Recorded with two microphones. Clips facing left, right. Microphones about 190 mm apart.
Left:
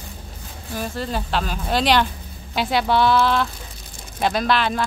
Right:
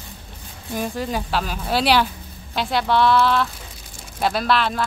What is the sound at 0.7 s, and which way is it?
A woman's voice, 15° right (ahead or behind).